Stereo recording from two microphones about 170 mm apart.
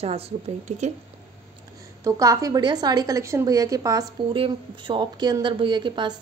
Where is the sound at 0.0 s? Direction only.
35° right (ahead or behind).